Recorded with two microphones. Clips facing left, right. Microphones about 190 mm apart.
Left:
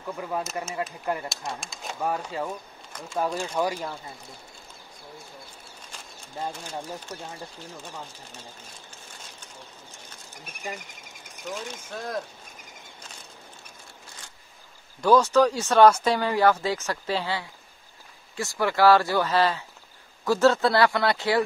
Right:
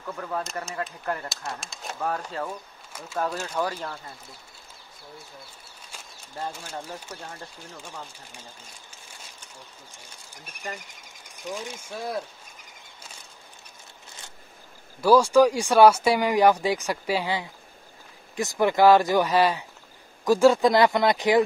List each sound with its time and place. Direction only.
0.0 s speech: 10° left (ahead or behind)
1.3 s speech: centre (ahead or behind)
2.9 s a sound: 5° right (ahead or behind)
3.2 s speech: 10° left (ahead or behind)
7.1 s speech: 10° left (ahead or behind)
10.4 s speech: 5° left (ahead or behind)
11.5 s speech: 10° right (ahead or behind)
15.0 s speech: 10° right (ahead or behind)